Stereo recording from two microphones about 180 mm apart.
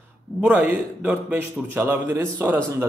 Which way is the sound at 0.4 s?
10° right (ahead or behind).